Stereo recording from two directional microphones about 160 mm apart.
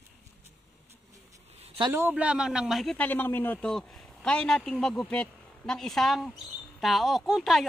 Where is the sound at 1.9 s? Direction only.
10° right (ahead or behind).